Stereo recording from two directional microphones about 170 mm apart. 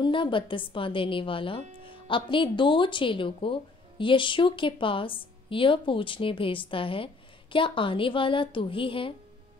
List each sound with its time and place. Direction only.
0.0 s a woman's voice: 30° left (ahead or behind)